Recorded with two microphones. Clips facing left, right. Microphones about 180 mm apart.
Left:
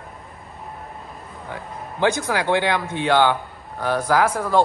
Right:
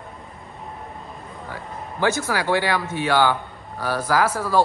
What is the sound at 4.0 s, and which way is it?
Speech, 5° right (ahead or behind).